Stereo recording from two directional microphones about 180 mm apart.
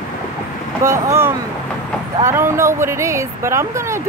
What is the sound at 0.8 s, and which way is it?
Speech, 15° right (ahead or behind).